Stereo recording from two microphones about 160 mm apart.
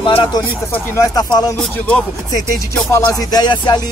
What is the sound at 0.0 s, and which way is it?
Speech, 30° left (ahead or behind).